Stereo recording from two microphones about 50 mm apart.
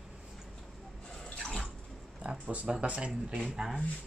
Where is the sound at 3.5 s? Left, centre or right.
Centre.